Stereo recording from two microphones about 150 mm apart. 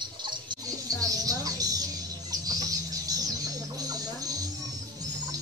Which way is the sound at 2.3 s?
25° right (ahead or behind).